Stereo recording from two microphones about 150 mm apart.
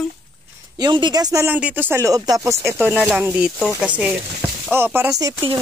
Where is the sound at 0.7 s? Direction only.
30° right (ahead or behind).